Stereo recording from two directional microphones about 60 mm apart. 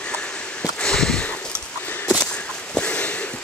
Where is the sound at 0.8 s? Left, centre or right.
Centre.